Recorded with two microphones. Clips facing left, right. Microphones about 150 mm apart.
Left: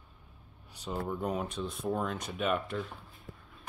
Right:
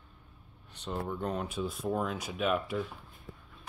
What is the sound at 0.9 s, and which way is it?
Speech, 5° left (ahead or behind).